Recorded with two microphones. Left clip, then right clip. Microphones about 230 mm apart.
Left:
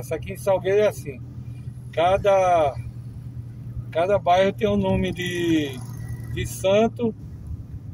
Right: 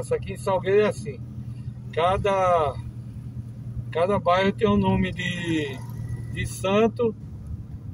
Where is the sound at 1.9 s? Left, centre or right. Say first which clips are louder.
Left 4 dB; centre.